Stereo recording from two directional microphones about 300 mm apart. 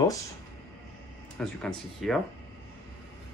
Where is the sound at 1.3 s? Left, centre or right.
Centre.